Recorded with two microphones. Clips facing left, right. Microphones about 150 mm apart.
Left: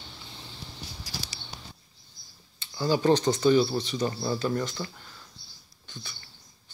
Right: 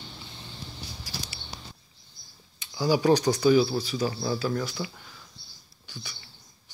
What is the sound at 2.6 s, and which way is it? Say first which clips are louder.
Speech: right 1 dB; 10° right (ahead or behind).